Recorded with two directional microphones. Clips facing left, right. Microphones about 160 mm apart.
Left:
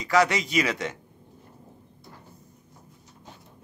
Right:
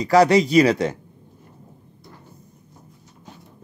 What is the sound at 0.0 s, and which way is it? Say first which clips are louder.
Speech: right 8 dB; 35° right (ahead or behind).